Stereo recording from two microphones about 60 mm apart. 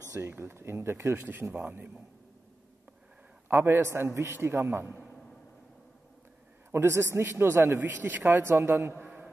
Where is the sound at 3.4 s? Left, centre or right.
Right.